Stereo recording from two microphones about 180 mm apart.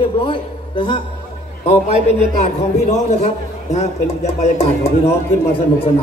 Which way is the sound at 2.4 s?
40° left (ahead or behind).